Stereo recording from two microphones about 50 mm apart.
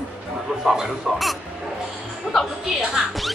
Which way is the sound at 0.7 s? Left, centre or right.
Centre.